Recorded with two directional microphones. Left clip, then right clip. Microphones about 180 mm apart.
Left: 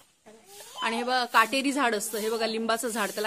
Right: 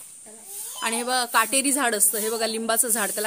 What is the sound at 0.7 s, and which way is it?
A woman's voice, 25° right (ahead or behind).